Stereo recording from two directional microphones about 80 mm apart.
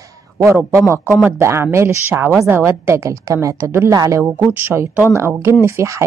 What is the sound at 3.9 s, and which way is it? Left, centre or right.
Speech, right.